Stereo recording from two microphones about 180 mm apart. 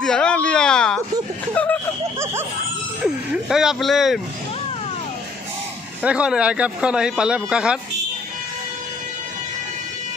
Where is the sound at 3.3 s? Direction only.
Centre (ahead or behind).